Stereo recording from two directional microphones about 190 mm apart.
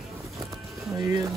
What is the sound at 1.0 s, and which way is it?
Speech, 20° right (ahead or behind).